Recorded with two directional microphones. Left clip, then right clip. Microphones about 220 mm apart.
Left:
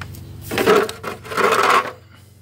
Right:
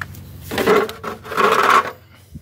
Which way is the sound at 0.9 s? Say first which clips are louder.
Right 2 dB; 20° left (ahead or behind).